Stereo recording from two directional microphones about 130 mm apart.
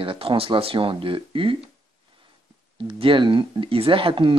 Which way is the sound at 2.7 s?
40° right (ahead or behind).